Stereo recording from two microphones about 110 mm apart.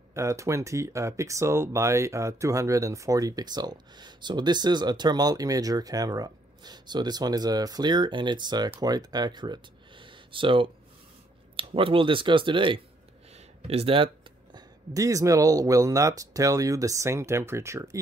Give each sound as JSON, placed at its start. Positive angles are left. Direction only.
{"t": 0.1, "sound": "speech", "side_deg": -25}
{"t": 13.3, "sound": "a sound", "side_deg": -65}
{"t": 15.0, "sound": "speech", "side_deg": -30}